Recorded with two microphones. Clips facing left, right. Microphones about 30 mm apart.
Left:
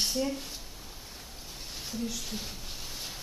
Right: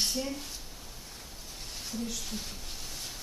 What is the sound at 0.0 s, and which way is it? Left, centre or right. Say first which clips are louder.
Speech: left 2 dB; centre.